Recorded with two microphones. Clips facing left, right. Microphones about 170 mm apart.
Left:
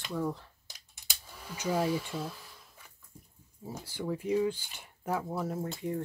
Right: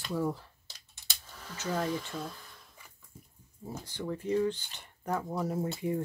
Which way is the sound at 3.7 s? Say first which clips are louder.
Left 1 dB; 5° left (ahead or behind).